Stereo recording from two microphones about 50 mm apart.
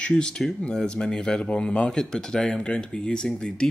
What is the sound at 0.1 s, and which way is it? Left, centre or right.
Speech, centre.